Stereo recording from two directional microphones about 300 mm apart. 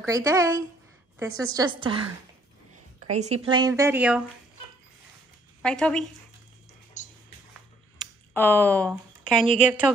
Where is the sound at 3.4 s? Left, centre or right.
Centre.